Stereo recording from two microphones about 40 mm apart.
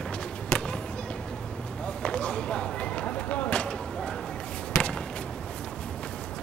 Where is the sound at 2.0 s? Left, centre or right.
Left.